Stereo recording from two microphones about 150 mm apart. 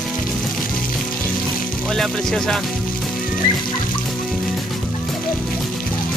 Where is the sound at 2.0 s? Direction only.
5° left (ahead or behind).